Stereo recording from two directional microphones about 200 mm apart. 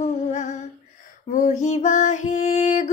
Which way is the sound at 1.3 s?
35° left (ahead or behind).